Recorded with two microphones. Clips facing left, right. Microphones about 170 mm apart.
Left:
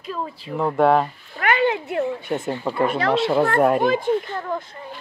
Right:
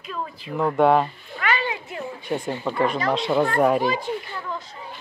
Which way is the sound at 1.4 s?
60° left (ahead or behind).